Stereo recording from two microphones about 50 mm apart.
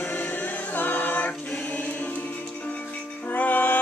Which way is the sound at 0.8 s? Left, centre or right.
Left.